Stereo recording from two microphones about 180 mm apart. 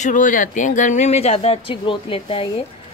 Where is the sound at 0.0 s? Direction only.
45° left (ahead or behind).